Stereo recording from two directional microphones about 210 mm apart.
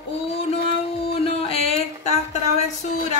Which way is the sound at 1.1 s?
25° left (ahead or behind).